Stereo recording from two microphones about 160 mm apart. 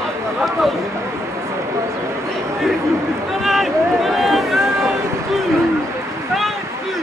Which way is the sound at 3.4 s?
Centre (ahead or behind).